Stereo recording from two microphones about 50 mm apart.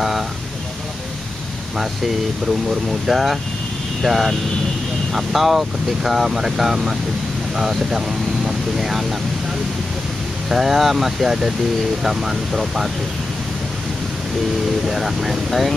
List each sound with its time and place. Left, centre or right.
2.4 s speech: centre
10.5 s speech: centre
14.9 s speech: centre